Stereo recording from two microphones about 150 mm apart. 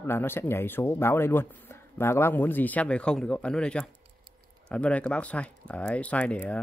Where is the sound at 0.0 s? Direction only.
15° left (ahead or behind).